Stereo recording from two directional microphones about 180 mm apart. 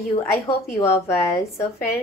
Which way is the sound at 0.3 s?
15° left (ahead or behind).